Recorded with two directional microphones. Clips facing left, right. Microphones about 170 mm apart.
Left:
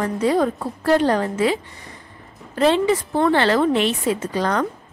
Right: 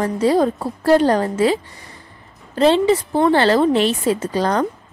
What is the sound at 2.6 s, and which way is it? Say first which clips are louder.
A woman's voice: right 3 dB; 30° right (ahead or behind).